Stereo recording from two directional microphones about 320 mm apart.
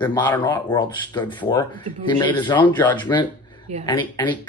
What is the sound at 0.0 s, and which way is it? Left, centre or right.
Speech, centre.